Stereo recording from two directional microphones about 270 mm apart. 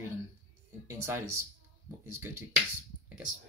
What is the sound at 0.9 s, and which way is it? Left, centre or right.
Speech, centre.